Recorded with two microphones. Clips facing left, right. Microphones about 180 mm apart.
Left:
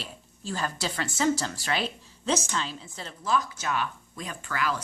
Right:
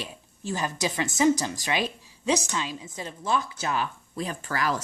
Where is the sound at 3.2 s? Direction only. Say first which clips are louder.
Even; 25° right (ahead or behind).